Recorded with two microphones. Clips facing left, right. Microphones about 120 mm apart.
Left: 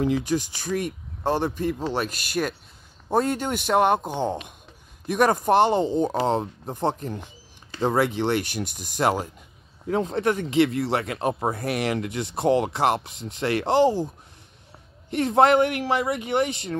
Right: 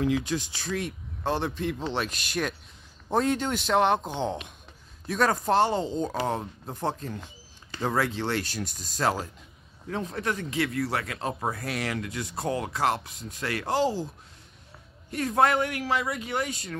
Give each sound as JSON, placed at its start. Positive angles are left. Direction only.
{"t": 0.0, "sound": "speech", "side_deg": 15}
{"t": 10.3, "sound": "speech", "side_deg": 20}
{"t": 12.9, "sound": "speech", "side_deg": 65}
{"t": 15.1, "sound": "speech", "side_deg": 20}